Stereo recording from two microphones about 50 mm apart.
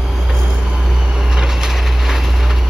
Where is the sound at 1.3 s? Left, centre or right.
Centre.